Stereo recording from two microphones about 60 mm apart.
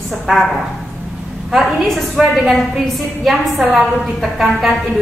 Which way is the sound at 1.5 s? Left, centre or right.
Centre.